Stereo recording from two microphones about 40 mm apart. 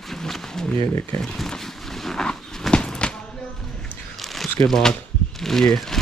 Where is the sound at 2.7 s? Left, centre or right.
Left.